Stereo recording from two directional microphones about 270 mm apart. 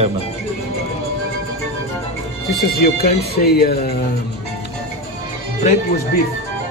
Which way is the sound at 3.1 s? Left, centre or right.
Left.